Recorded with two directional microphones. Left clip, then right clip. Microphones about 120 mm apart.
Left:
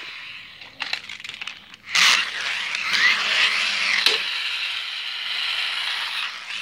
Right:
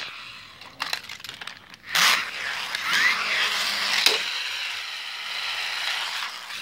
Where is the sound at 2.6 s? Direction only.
60° right (ahead or behind).